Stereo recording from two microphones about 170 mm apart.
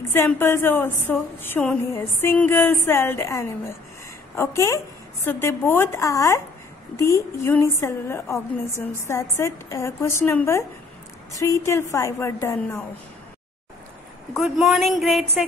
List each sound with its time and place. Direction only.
0.1 s a woman's voice: 15° left (ahead or behind)
14.3 s a woman's voice: centre (ahead or behind)